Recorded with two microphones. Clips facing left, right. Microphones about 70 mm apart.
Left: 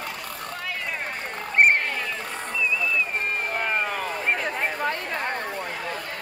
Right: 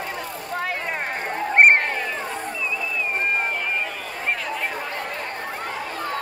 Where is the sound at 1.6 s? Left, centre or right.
Right.